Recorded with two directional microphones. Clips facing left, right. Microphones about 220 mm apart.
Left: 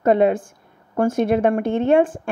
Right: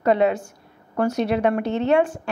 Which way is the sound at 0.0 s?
50° left (ahead or behind).